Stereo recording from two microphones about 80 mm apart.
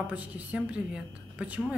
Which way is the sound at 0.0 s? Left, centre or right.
Centre.